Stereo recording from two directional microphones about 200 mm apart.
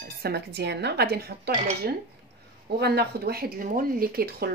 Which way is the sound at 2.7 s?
55° right (ahead or behind).